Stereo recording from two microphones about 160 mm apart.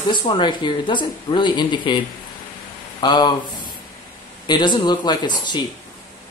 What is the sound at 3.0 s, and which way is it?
Speech, 25° left (ahead or behind).